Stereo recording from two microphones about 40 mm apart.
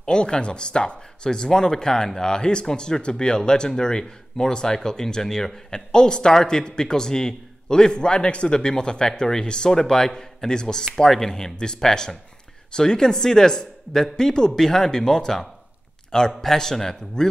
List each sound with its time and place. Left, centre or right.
0.0 s a man's voice: left